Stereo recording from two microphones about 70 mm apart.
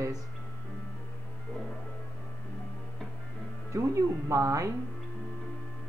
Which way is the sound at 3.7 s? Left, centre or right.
Right.